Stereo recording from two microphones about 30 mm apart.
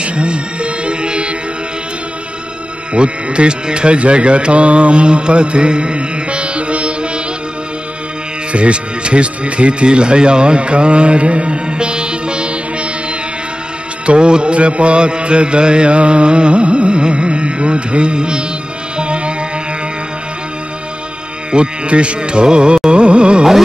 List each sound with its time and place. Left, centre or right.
0.0 s music: right
2.9 s speech: right
8.5 s music: right
14.0 s music: right
21.5 s music: right